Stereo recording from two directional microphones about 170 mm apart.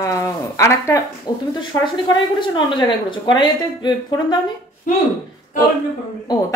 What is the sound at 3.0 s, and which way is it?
A woman's voice, 25° left (ahead or behind).